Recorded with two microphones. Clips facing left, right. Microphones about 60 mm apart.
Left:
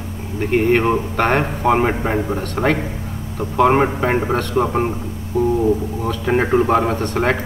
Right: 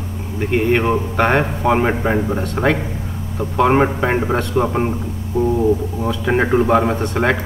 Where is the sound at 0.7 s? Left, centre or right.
Centre.